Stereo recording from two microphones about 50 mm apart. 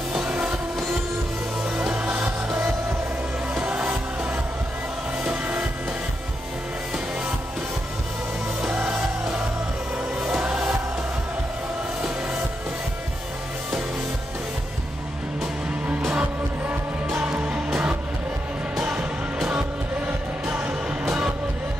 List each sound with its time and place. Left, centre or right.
0.1 s music: centre
2.0 s music: right
5.2 s music: right
8.7 s music: centre
16.1 s music: right
18.8 s music: centre